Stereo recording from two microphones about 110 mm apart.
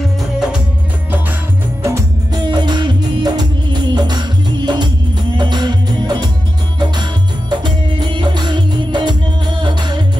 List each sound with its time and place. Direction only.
1.8 s music: 25° right (ahead or behind)
2.3 s music: 40° right (ahead or behind)